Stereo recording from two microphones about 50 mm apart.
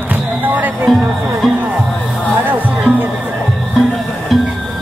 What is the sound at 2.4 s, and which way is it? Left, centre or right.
Music, right.